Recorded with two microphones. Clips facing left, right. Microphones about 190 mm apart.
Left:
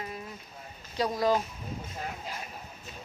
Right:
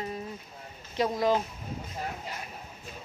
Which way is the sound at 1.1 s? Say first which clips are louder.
Even; 20° right (ahead or behind).